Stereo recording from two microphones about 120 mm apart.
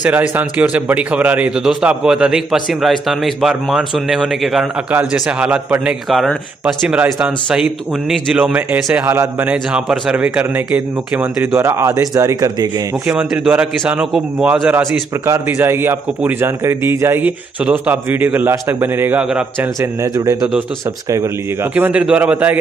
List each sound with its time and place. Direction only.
0.0 s speech: 15° right (ahead or behind)
4.9 s a man's voice: 10° right (ahead or behind); by 12.8 s 35° right (ahead or behind)
13.0 s a man's voice: 20° right (ahead or behind)
21.7 s a man's voice: 15° right (ahead or behind)